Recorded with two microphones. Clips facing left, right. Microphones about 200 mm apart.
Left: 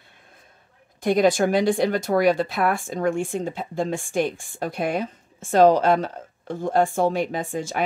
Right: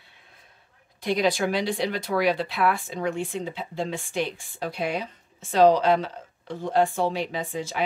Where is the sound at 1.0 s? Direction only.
50° left (ahead or behind).